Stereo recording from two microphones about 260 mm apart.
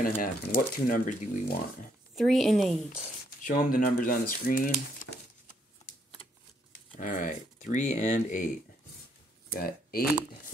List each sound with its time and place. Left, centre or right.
0.0 s speech: left
2.1 s a woman's voice: centre
3.4 s speech: left
5.0 s a sound: left
7.0 s speech: left
9.5 s speech: left